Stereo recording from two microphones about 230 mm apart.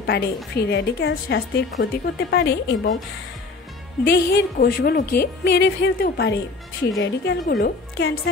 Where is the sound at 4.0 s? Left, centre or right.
Left.